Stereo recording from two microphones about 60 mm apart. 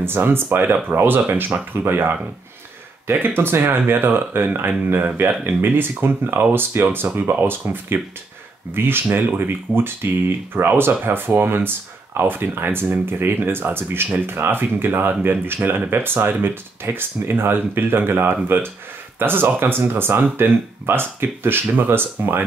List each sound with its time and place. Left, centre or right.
0.0 s speech: right